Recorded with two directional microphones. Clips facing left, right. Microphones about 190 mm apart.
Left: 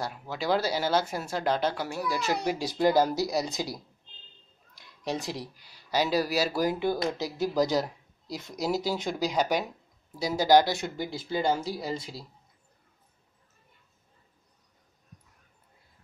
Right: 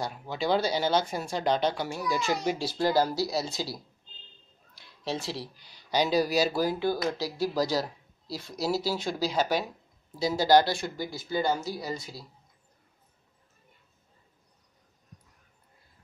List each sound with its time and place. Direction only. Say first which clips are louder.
0.0 s speech: right 1 dB; 5° left (ahead or behind)
2.6 s speech: left 4 dB; 20° left (ahead or behind)
5.0 s speech: left 1 dB; 15° left (ahead or behind)
6.6 s speech: even; 20° left (ahead or behind)